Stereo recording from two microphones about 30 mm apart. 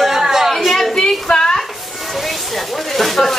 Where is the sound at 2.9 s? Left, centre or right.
Centre.